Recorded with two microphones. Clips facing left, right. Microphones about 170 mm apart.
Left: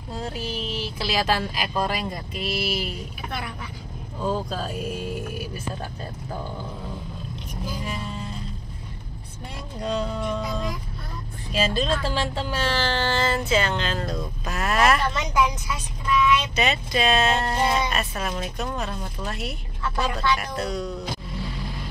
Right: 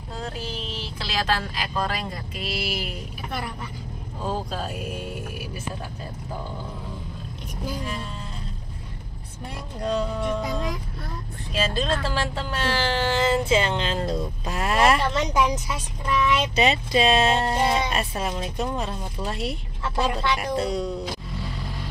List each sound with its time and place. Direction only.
0.1 s speech: 10° left (ahead or behind)
9.8 s music: 5° right (ahead or behind)
11.7 s speech: centre (ahead or behind)
12.7 s speech: 10° right (ahead or behind); by 20.9 s 30° right (ahead or behind)